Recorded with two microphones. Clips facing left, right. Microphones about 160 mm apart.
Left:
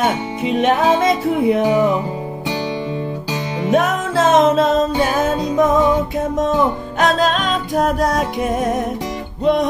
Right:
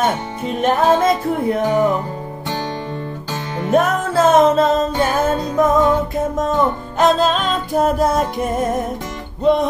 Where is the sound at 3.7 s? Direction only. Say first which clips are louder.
Right 2 dB; centre (ahead or behind).